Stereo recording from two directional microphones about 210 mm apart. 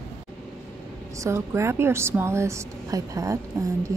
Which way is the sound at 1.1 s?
15° right (ahead or behind).